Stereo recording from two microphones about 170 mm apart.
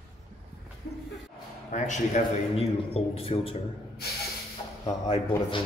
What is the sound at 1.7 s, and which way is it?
A man's voice, 45° left (ahead or behind).